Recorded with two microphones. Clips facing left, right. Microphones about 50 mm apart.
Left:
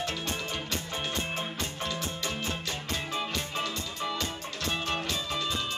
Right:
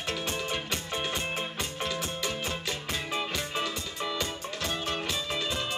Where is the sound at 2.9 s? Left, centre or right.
Centre.